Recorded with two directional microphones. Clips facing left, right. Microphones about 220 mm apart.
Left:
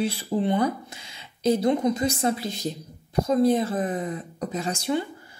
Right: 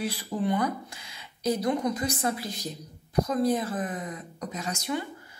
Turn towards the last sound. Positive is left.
turn(degrees=30)  # may be behind; listen again after turning